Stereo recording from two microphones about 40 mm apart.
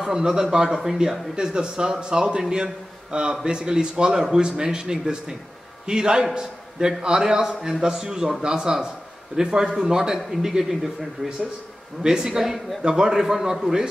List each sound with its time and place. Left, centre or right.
0.0 s a man's voice: centre
12.0 s a man's voice: centre